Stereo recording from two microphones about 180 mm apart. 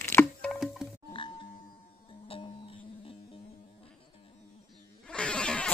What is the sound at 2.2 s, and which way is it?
Music, 30° left (ahead or behind).